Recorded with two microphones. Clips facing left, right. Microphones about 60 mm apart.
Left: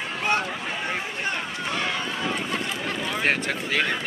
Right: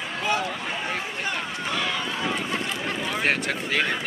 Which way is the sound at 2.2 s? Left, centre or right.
Centre.